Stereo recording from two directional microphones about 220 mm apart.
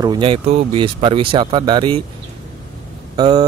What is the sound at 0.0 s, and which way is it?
Speech, 20° right (ahead or behind).